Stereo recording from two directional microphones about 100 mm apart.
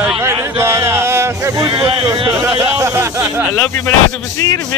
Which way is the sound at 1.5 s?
50° right (ahead or behind).